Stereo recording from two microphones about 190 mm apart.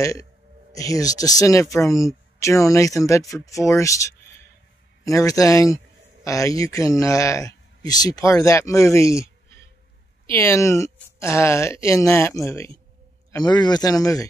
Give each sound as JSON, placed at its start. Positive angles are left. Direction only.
{"t": 0.0, "sound": "speech", "side_deg": 15}